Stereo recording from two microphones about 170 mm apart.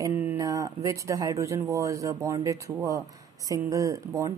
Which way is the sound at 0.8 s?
20° right (ahead or behind).